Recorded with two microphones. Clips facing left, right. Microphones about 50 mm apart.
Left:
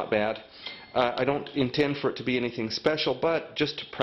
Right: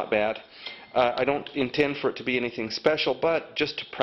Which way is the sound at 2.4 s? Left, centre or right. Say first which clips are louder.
Right 1 dB; centre.